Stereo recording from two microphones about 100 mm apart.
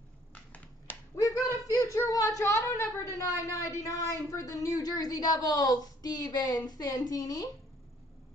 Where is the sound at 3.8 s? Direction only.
35° left (ahead or behind).